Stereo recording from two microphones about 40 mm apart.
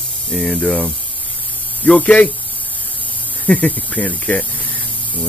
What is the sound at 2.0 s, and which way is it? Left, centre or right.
Speech, left.